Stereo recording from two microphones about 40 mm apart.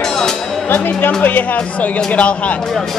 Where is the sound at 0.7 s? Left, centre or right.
Left.